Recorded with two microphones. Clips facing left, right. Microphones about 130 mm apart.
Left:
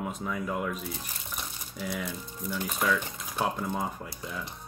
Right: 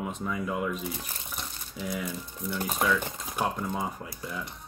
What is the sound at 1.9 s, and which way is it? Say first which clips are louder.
Speech: right 2 dB; centre (ahead or behind).